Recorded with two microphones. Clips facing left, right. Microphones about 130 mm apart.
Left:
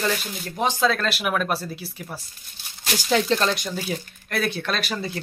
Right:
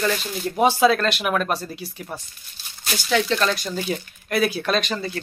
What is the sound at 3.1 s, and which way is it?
Speech, 35° left (ahead or behind).